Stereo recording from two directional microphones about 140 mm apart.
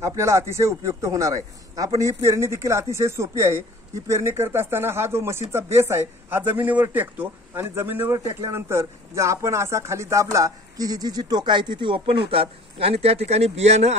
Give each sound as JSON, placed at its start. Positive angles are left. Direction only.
{"t": 0.0, "sound": "a man's voice", "side_deg": -20}